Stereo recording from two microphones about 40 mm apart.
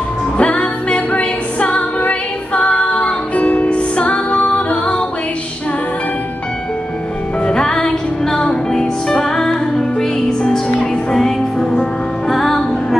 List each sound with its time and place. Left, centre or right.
0.4 s music: left
7.4 s music: centre